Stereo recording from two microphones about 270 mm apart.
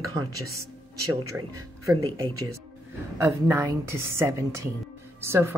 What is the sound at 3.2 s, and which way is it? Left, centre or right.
A woman's voice, centre.